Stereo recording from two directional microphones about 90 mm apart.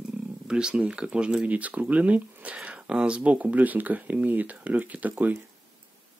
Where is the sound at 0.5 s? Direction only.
10° right (ahead or behind).